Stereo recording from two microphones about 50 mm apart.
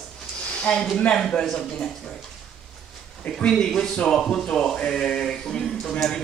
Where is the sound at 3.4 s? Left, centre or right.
Centre.